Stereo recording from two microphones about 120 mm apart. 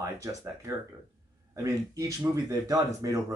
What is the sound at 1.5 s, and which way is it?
Speech, 25° right (ahead or behind).